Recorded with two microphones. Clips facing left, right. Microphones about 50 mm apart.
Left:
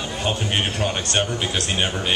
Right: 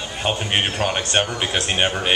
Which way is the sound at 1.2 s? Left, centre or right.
Right.